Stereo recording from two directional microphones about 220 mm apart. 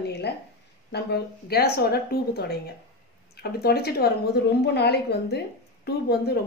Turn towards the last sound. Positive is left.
turn(degrees=45)  # may be behind; listen again after turning